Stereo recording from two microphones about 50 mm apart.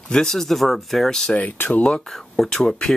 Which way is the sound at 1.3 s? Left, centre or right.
Left.